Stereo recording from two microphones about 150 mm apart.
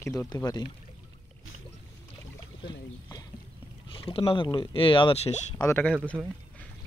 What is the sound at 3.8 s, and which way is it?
Speech, 35° left (ahead or behind).